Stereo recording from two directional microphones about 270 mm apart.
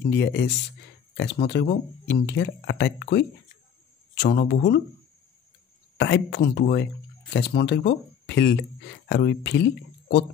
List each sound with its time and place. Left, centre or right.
0.1 s speech: left
5.9 s speech: left